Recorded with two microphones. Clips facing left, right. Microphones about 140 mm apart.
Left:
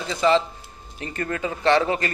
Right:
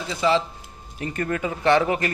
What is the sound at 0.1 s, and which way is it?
Speech, 5° right (ahead or behind).